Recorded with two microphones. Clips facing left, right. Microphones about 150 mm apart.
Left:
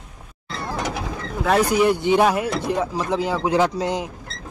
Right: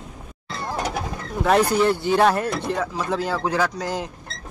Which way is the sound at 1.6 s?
10° left (ahead or behind).